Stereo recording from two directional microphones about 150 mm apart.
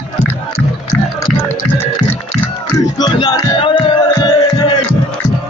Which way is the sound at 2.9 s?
30° left (ahead or behind).